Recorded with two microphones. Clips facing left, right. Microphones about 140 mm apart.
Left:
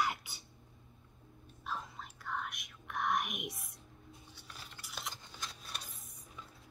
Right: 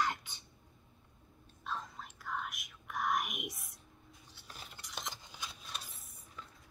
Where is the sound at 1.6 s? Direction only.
Centre (ahead or behind).